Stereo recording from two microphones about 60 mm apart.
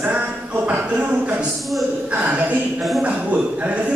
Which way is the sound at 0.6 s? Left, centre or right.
Right.